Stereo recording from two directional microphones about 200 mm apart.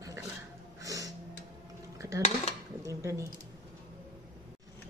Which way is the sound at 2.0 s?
15° right (ahead or behind).